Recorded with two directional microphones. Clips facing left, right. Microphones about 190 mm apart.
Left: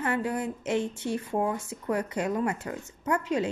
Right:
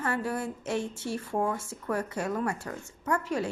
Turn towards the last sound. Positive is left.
turn(degrees=20)  # may be behind; listen again after turning